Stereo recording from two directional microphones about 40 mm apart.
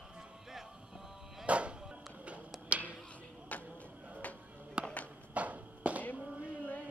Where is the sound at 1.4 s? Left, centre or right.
Right.